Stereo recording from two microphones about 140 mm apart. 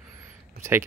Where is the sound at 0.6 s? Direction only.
15° right (ahead or behind).